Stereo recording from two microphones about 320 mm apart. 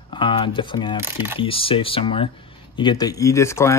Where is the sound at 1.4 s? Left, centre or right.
Centre.